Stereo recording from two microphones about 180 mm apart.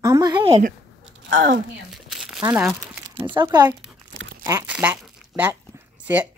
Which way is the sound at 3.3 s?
25° right (ahead or behind).